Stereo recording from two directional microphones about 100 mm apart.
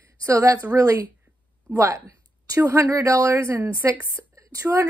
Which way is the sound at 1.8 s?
30° right (ahead or behind).